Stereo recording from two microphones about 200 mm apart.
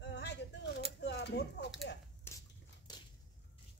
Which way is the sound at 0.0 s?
60° left (ahead or behind).